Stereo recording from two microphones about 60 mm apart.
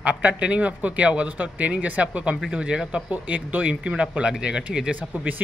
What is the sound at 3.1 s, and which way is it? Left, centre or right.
A man's voice, right.